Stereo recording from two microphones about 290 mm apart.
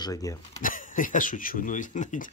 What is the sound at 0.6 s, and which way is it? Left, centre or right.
Speech, left.